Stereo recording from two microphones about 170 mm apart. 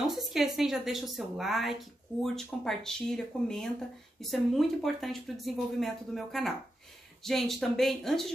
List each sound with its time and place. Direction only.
0.0 s speech: centre (ahead or behind)